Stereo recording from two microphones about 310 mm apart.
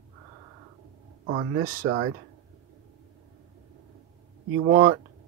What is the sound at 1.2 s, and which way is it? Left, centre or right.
Speech, right.